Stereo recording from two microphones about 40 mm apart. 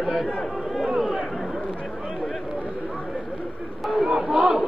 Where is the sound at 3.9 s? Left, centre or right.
Centre.